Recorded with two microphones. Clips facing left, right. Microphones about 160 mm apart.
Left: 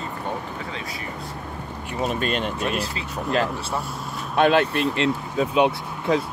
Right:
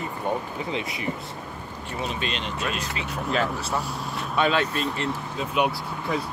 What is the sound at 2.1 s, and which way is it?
Speech, 50° left (ahead or behind).